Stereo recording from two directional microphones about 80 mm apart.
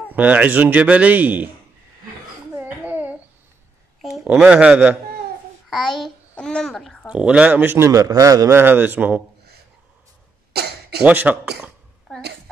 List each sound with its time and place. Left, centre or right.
0.1 s a man's voice: centre
2.5 s babbling: right
4.0 s a sound: centre
4.3 s speech: centre
5.7 s a child's voice: centre
7.1 s speech: centre
7.7 s a man's voice: right
8.5 s a man's voice: right
11.1 s a man's voice: centre